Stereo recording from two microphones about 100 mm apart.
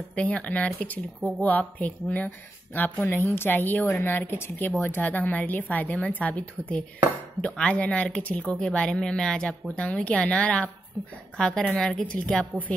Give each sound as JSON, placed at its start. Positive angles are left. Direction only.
{"t": 0.1, "sound": "speech", "side_deg": 15}